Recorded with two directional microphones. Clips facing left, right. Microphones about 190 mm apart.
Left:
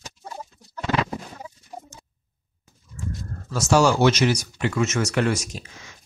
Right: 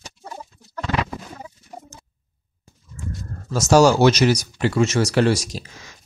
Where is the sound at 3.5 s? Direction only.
40° right (ahead or behind).